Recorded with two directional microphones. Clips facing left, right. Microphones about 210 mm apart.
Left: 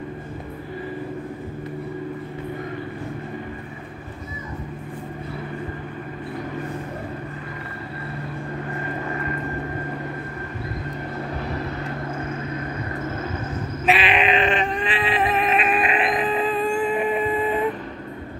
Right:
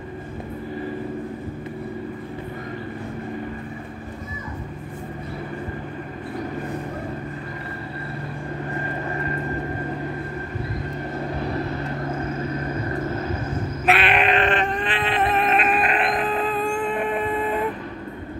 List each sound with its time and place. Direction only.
13.8 s cat: centre (ahead or behind)